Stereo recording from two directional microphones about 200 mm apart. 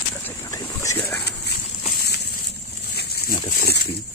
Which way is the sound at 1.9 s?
55° left (ahead or behind).